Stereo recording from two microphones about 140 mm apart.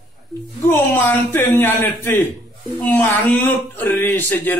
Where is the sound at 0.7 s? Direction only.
15° left (ahead or behind).